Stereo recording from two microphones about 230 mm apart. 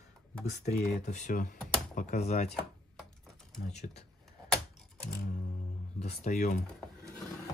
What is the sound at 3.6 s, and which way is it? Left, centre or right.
Speech, left.